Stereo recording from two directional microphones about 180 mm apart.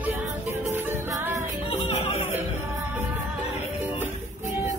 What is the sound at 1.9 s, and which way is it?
Music, 35° left (ahead or behind).